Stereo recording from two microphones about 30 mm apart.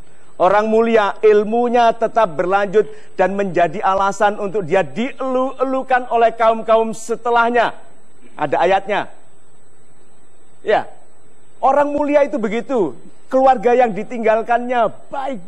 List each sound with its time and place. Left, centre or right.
0.4 s a man's voice: centre
7.8 s a sound: centre
10.6 s a man's voice: centre